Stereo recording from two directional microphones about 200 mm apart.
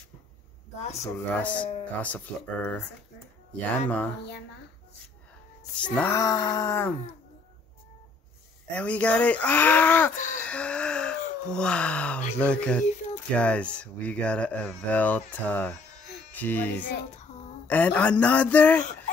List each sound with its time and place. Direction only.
1.1 s speech: 5° left (ahead or behind)
5.9 s speech: 10° left (ahead or behind)
8.7 s speech: 5° left (ahead or behind)
10.4 s a sound: 5° left (ahead or behind)
12.4 s speech: 5° left (ahead or behind)